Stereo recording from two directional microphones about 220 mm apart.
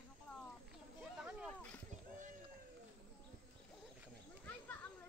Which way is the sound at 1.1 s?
5° right (ahead or behind).